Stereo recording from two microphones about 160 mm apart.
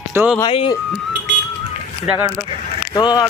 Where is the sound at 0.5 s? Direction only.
35° left (ahead or behind).